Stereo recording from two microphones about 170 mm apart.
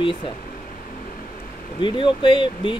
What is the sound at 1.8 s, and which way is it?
Speech, 30° left (ahead or behind).